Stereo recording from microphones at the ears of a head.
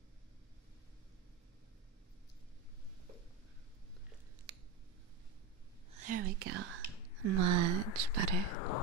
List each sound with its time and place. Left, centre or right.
5.9 s whispering: right
7.2 s speech: right
8.5 s whispering: left